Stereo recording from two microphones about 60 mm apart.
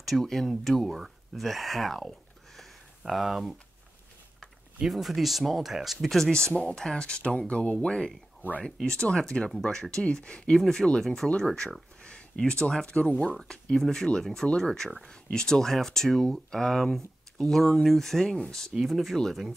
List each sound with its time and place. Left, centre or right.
0.0 s speech: centre
4.7 s speech: centre
18.7 s speech: centre